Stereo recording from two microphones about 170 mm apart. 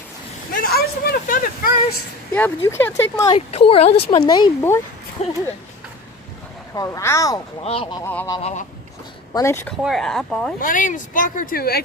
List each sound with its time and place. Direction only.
0.5 s a sound: 60° left (ahead or behind)
2.3 s speech: 15° left (ahead or behind)
3.3 s speech: 35° left (ahead or behind)
5.2 s speech: 40° left (ahead or behind)
6.7 s speech: 20° left (ahead or behind)
7.6 s speech: 35° left (ahead or behind)
8.0 s speech: 10° left (ahead or behind)
8.4 s speech: 40° left (ahead or behind)
9.3 s speech: 15° left (ahead or behind)
9.8 s speech: centre (ahead or behind)
10.6 s speech: 50° left (ahead or behind)